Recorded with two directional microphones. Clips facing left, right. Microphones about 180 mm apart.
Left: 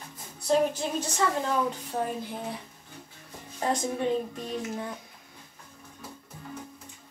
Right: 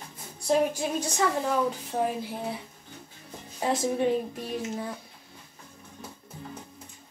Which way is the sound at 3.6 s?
5° right (ahead or behind).